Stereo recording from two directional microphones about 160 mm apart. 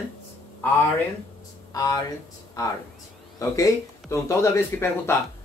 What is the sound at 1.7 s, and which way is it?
Speech, 20° left (ahead or behind).